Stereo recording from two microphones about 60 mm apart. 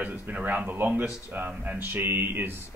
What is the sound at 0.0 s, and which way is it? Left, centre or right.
Speech, right.